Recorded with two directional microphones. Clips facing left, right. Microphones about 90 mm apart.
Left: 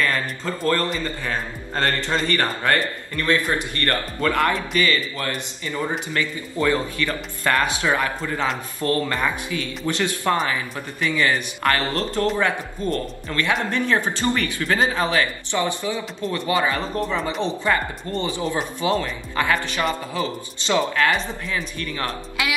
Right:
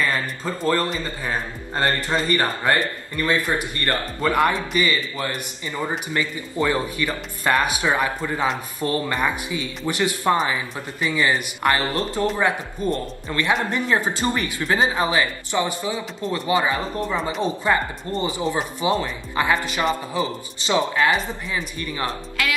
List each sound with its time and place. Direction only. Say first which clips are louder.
0.0 s a man's voice: even; 15° right (ahead or behind)
17.0 s a man's voice: even; 5° right (ahead or behind)